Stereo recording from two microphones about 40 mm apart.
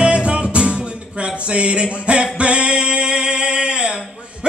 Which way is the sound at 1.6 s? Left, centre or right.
Right.